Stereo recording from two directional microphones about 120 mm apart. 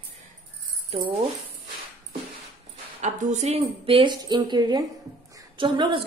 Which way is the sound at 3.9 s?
45° right (ahead or behind).